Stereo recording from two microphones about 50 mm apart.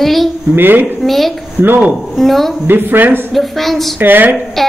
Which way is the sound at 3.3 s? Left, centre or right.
Centre.